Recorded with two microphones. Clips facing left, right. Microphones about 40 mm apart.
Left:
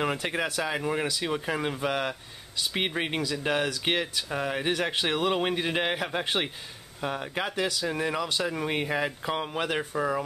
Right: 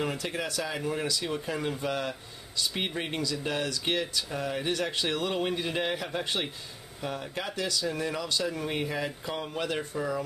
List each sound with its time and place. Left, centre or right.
0.0 s speech: left